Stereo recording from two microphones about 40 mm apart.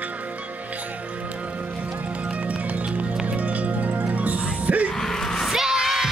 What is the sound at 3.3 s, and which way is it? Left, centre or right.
Music, right.